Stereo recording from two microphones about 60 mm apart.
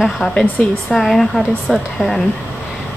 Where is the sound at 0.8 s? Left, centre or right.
Centre.